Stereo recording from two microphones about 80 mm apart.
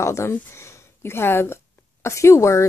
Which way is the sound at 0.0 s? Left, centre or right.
Left.